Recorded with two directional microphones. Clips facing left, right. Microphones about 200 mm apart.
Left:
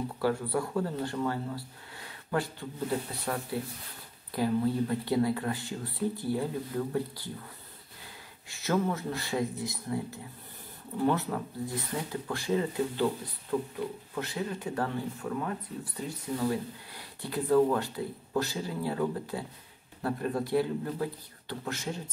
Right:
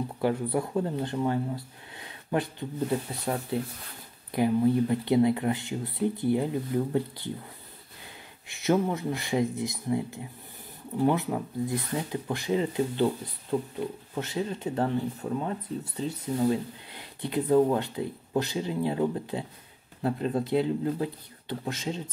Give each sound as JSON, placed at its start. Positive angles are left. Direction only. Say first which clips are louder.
{"t": 0.2, "sound": "speech", "louder": "right 2 dB", "side_deg": -20}
{"t": 8.5, "sound": "speech", "louder": "right 4 dB", "side_deg": -20}